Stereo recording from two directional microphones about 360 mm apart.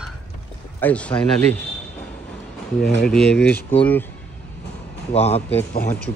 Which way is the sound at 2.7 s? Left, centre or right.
Centre.